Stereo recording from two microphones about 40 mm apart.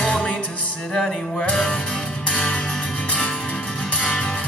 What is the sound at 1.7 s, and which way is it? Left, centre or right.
Music, left.